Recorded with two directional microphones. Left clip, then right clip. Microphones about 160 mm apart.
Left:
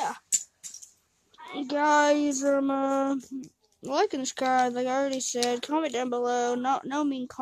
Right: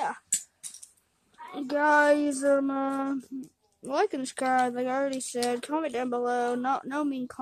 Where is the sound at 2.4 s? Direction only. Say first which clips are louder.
Even; 30° left (ahead or behind).